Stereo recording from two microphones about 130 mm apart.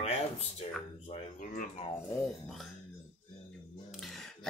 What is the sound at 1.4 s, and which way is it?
Speech, 90° left.